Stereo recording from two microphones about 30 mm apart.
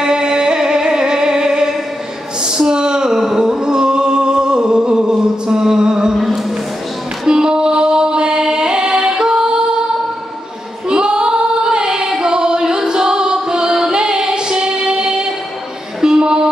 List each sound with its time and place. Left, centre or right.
0.0 s music: right
2.4 s a sound: right
3.1 s a sound: centre
3.3 s music: right
6.1 s music: centre
7.2 s music: right
10.9 s female singing: right
16.0 s music: right